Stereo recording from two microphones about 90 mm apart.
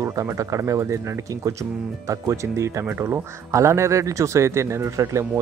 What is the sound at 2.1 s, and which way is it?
Speech, 35° right (ahead or behind).